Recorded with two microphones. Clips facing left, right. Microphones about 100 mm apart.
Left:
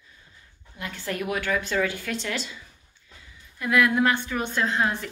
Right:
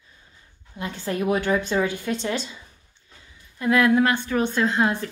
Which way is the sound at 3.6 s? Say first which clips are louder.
Right 3 dB; 30° right (ahead or behind).